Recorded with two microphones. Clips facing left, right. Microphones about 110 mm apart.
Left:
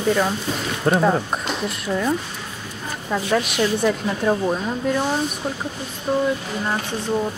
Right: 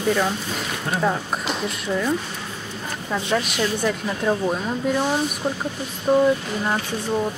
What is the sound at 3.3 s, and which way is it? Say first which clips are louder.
A woman's voice: left 3 dB; 5° left (ahead or behind).